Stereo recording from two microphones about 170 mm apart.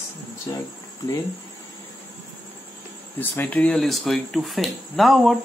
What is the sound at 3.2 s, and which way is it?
Speech, 10° left (ahead or behind).